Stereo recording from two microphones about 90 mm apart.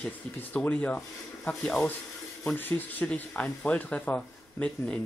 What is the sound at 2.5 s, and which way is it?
Speech, 20° left (ahead or behind).